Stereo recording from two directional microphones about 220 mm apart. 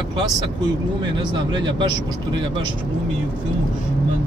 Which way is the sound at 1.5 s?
20° right (ahead or behind).